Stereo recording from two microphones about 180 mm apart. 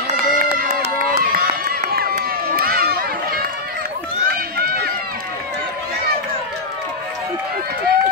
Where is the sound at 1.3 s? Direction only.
55° right (ahead or behind).